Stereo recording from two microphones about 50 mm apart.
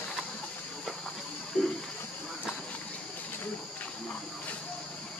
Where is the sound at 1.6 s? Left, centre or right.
Left.